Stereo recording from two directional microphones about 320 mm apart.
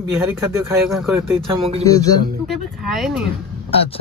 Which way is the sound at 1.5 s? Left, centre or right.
Centre.